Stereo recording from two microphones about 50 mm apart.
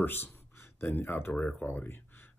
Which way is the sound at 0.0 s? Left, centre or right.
Left.